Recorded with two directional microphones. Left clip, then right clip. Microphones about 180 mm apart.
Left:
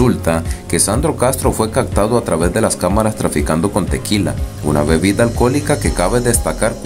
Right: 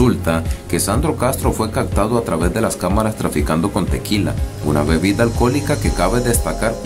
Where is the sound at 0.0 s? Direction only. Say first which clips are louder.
Left 2 dB; 15° left (ahead or behind).